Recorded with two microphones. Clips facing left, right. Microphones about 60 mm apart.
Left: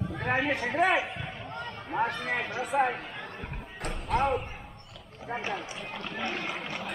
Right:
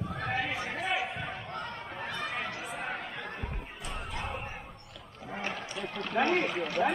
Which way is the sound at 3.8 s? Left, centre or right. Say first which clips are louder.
Left 11 dB; left.